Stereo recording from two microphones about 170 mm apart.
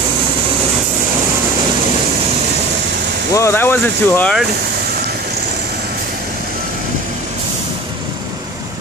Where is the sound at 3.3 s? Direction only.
15° left (ahead or behind).